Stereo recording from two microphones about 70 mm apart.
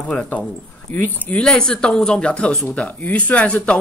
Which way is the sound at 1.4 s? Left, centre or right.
Centre.